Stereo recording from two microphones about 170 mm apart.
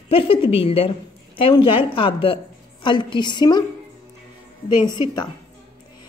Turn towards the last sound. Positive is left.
turn(degrees=25)  # may be behind; listen again after turning